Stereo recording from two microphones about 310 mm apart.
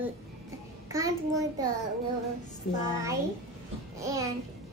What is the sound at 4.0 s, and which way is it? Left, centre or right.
Speech, centre.